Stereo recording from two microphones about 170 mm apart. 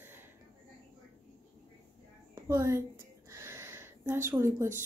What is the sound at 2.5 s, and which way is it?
Speech, 20° right (ahead or behind).